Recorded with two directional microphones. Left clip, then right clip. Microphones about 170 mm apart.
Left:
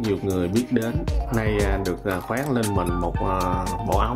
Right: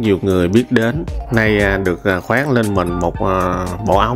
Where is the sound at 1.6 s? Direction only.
40° right (ahead or behind).